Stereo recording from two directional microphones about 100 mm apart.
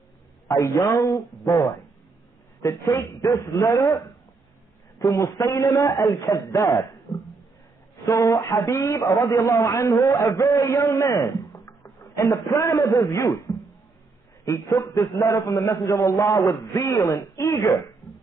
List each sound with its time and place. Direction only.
0.5 s a man's voice: 30° left (ahead or behind)
2.6 s a man's voice: 30° left (ahead or behind)
7.1 s a sound: 30° left (ahead or behind)
8.0 s a man's voice: 35° left (ahead or behind)
14.7 s a man's voice: 40° left (ahead or behind)